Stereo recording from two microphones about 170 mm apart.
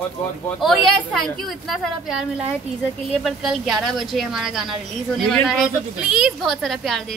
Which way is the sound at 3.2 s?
Centre (ahead or behind).